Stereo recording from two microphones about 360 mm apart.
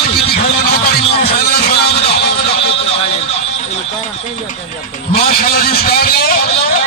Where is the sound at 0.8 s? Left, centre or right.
Left.